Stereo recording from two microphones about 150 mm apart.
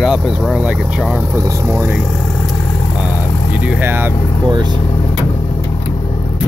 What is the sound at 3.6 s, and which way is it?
Speech, 10° right (ahead or behind).